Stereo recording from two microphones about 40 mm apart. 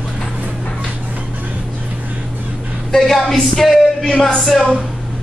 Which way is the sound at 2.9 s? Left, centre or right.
Centre.